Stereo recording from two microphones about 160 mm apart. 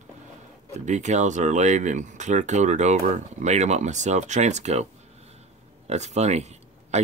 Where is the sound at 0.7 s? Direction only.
45° right (ahead or behind).